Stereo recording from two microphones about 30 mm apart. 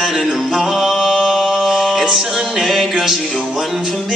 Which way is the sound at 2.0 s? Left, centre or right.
Centre.